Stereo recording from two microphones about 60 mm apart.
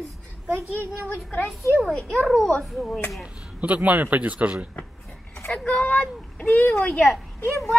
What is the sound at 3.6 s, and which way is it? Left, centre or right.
Speech, right.